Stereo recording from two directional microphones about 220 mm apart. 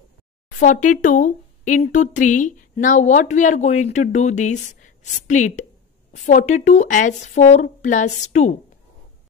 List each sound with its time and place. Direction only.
0.6 s speech: 35° left (ahead or behind)